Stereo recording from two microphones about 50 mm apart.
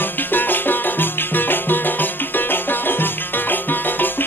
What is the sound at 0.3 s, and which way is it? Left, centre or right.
Music, left.